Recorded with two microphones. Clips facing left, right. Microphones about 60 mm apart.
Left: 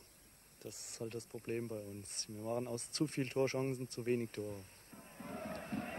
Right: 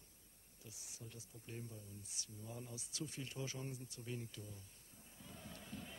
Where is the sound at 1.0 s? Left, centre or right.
Left.